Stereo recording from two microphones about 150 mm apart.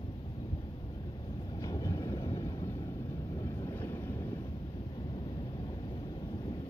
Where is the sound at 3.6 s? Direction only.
15° left (ahead or behind).